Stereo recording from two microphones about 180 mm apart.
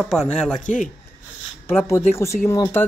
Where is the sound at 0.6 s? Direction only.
45° left (ahead or behind).